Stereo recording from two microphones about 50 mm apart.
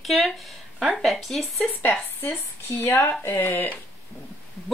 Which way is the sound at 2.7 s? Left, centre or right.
Left.